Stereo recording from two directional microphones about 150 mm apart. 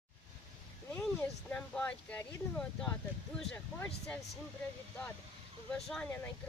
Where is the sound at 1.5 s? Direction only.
10° left (ahead or behind).